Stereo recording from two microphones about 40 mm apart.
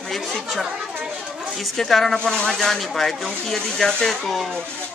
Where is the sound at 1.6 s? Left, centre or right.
Centre.